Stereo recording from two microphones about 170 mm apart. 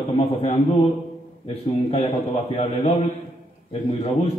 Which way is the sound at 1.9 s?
40° left (ahead or behind).